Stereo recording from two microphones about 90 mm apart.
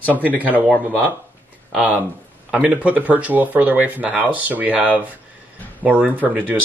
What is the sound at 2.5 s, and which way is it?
Speech, 15° right (ahead or behind).